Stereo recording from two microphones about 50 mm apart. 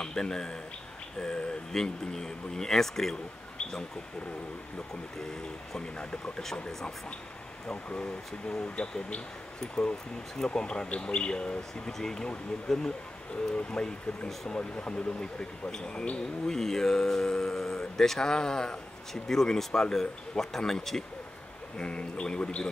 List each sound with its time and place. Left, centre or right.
0.0 s speech: centre
5.3 s speech: centre
21.7 s speech: centre